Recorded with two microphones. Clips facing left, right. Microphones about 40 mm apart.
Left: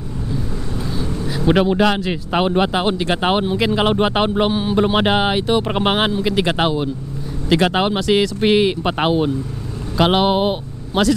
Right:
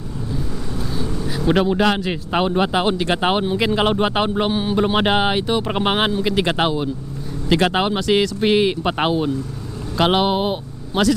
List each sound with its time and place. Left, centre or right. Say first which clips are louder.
1.4 s speech: left 2 dB; centre
1.9 s speech: left 1 dB; centre
2.4 s speech: left 1 dB; centre
2.8 s speech: even; centre
3.9 s speech: left 2 dB; centre
4.5 s speech: left 2 dB; centre
7.8 s speech: left 1 dB; centre
10.2 s speech: left 3 dB; left